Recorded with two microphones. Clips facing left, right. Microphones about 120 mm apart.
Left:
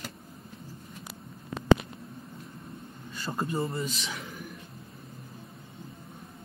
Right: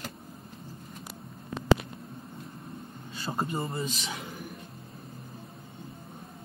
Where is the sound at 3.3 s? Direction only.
15° right (ahead or behind).